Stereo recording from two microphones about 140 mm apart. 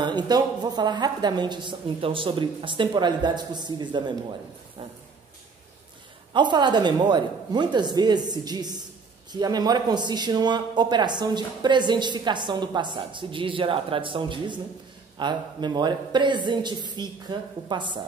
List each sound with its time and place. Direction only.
0.0 s a man's voice: 30° right (ahead or behind)
6.3 s a man's voice: 35° right (ahead or behind)